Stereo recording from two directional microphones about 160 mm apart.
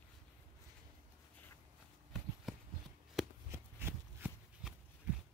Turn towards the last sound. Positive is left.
turn(degrees=-5)  # may be behind; listen again after turning